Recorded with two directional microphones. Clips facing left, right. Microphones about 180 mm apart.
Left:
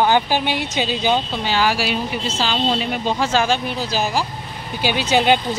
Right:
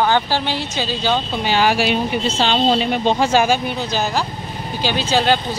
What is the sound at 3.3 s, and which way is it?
Speech, 10° right (ahead or behind).